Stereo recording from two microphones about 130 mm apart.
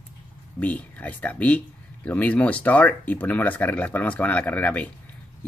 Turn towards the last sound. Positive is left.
turn(degrees=10)  # may be behind; listen again after turning